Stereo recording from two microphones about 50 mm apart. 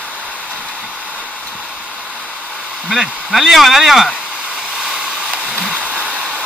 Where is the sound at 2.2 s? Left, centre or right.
Left.